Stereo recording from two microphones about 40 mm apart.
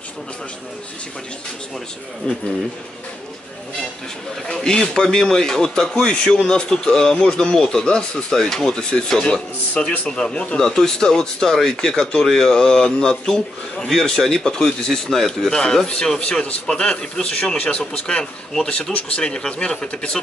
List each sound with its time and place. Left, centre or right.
2.3 s speech: left
4.6 s speech: centre
9.2 s speech: left
10.6 s speech: centre